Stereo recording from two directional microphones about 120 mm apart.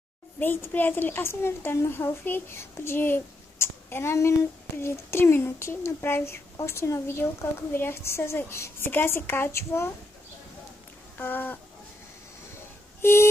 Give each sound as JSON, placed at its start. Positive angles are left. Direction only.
{"t": 0.4, "sound": "a woman's voice", "side_deg": 15}
{"t": 11.1, "sound": "a sound", "side_deg": 15}
{"t": 13.0, "sound": "a woman's voice", "side_deg": 20}